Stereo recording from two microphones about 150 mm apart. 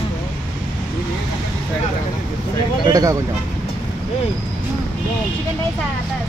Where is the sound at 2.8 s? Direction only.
25° right (ahead or behind).